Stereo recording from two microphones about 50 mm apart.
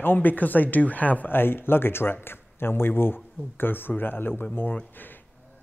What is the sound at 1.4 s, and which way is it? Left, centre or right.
A man's voice, left.